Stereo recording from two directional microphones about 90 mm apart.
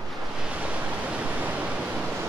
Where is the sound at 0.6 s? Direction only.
15° right (ahead or behind).